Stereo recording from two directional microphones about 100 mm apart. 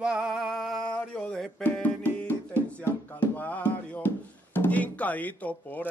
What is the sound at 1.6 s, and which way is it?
Music, 15° left (ahead or behind).